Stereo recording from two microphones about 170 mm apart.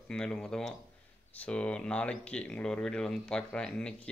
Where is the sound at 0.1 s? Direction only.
5° left (ahead or behind).